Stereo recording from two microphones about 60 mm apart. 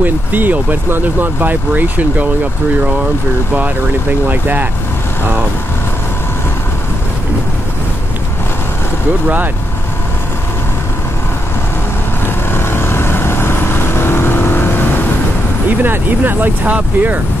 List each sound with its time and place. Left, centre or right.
0.0 s speech: right
4.3 s speech: right
12.4 s vehicle: left
15.8 s speech: right